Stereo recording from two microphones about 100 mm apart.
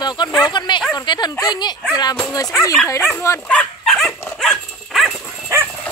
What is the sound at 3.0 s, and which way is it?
Speech, 25° left (ahead or behind).